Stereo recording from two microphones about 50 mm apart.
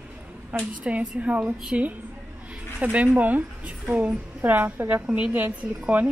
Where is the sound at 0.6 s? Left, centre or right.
Right.